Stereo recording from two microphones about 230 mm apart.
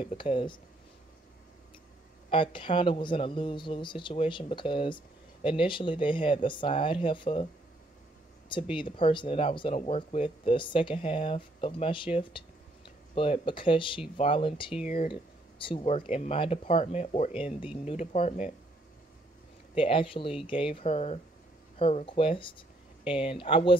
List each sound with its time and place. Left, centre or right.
0.0 s speech: left
2.2 s speech: left
8.7 s speech: left
19.8 s speech: left